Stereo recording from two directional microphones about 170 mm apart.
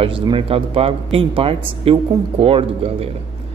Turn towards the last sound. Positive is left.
turn(degrees=-35)  # may be behind; listen again after turning